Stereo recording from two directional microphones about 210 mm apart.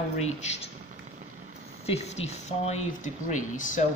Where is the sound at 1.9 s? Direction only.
30° left (ahead or behind).